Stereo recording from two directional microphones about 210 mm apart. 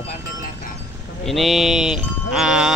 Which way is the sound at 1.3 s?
Centre (ahead or behind).